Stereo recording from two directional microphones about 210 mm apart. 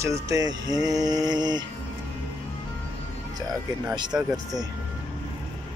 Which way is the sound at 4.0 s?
20° right (ahead or behind).